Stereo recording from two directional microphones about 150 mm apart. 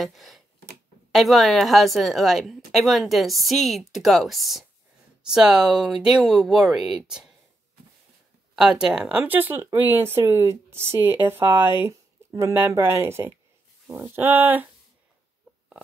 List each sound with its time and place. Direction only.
0.0 s a woman's voice: centre (ahead or behind)
8.5 s a woman's voice: 5° right (ahead or behind)